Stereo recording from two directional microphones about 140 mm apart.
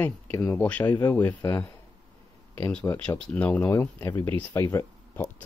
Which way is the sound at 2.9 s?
25° left (ahead or behind).